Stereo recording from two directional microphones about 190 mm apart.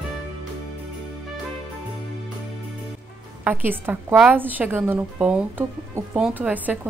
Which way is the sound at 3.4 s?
10° right (ahead or behind).